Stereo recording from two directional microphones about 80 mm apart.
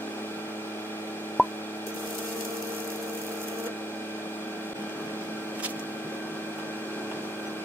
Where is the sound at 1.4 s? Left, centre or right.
Left.